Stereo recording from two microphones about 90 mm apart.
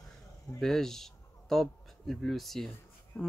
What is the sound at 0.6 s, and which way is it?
Speech, 5° left (ahead or behind).